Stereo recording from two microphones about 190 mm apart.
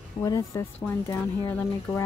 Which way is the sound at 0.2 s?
15° left (ahead or behind).